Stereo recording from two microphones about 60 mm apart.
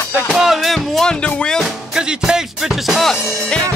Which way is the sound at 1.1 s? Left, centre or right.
Centre.